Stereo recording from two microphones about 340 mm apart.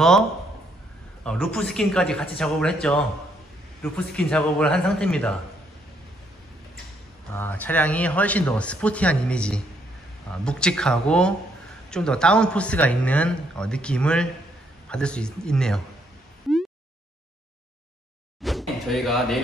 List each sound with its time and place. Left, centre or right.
1.2 s a man's voice: centre
7.3 s a man's voice: centre
18.4 s a sound: centre